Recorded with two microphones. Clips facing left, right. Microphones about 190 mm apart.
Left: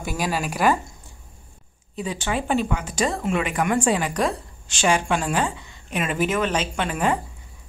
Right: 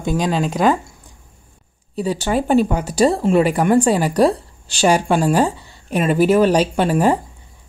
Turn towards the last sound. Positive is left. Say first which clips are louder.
# right 7 dB
turn(degrees=-35)  # may be behind; listen again after turning